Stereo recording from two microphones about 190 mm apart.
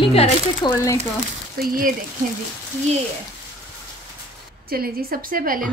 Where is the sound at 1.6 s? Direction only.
45° right (ahead or behind).